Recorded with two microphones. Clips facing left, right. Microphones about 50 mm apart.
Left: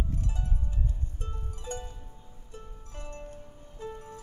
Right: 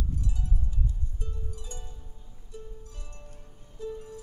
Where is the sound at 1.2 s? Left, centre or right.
Left.